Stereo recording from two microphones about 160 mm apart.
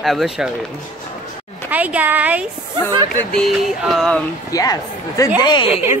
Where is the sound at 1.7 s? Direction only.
10° right (ahead or behind).